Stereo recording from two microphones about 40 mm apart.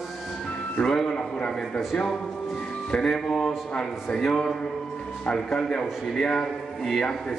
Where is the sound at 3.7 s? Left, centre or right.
Left.